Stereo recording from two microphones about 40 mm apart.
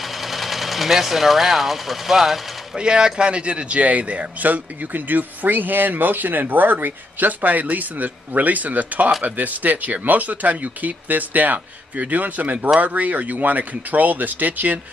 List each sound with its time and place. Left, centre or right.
0.2 s speech: centre
2.7 s speech: right